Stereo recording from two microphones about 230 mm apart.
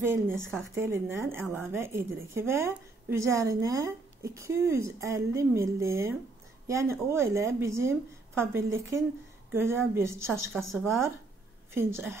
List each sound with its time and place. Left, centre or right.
0.0 s a woman's voice: centre
0.4 s speech: centre
0.7 s a woman's voice: centre
1.4 s speech: centre
1.7 s a woman's voice: centre
10.7 s speech: centre
11.7 s a woman's voice: centre